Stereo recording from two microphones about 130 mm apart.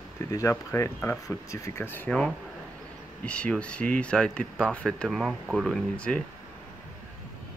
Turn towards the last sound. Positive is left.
turn(degrees=5)  # may be behind; listen again after turning